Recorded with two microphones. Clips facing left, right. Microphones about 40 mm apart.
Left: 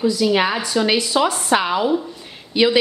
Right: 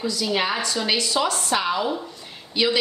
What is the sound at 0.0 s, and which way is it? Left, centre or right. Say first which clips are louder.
A woman's voice: left 7 dB; centre.